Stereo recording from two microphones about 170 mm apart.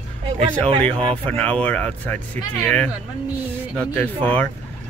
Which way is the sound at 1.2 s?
5° left (ahead or behind).